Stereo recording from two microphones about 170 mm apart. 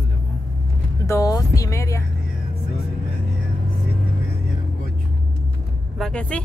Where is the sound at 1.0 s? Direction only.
20° left (ahead or behind).